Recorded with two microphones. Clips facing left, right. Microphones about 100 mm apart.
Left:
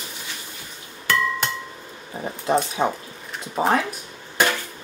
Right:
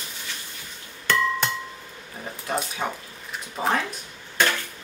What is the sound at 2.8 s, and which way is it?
Speech, 25° left (ahead or behind).